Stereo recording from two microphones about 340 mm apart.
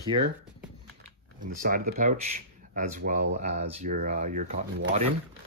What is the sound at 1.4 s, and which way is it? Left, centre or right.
Speech, right.